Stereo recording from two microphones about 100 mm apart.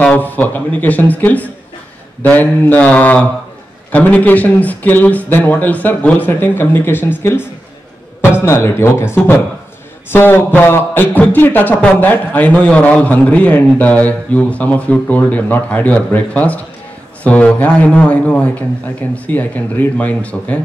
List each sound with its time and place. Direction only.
0.0 s a man's voice: 15° left (ahead or behind)